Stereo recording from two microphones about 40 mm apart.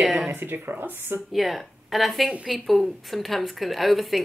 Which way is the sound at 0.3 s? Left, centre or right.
Right.